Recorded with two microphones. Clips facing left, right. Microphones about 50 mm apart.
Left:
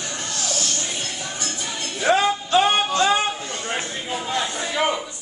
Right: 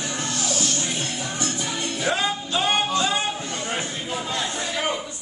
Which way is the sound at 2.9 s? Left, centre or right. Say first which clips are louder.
Left 4 dB; left.